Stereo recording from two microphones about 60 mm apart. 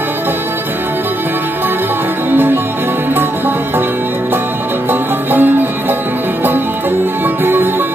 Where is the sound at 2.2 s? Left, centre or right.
Right.